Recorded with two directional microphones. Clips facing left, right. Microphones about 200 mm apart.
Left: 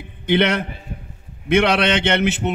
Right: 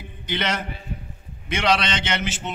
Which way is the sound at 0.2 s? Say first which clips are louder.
Left 9 dB; 60° left (ahead or behind).